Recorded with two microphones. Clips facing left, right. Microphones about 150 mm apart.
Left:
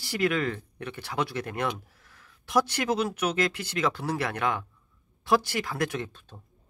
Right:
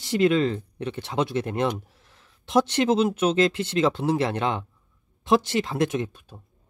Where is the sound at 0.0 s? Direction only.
25° right (ahead or behind).